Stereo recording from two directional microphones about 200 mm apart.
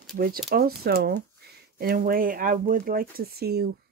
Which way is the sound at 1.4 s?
55° right (ahead or behind).